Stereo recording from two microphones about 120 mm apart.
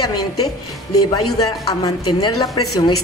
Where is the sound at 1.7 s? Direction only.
30° left (ahead or behind).